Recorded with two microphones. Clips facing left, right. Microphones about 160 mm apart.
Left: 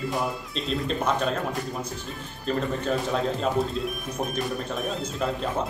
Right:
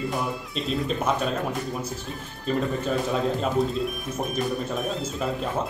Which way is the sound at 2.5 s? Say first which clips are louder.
Right 1 dB; 5° right (ahead or behind).